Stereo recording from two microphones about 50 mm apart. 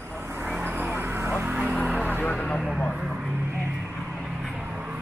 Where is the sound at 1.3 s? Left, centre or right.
Right.